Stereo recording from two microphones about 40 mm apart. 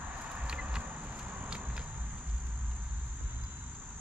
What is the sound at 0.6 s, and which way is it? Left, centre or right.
Cricket, right.